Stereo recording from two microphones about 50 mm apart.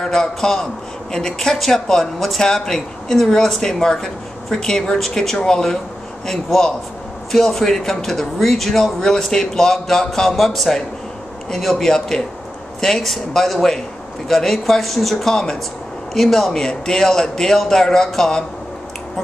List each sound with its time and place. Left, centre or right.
0.0 s speech: centre